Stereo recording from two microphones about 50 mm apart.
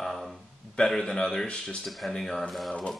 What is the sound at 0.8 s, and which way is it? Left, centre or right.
Speech, centre.